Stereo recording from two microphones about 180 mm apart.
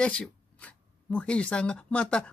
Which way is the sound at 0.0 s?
5° left (ahead or behind).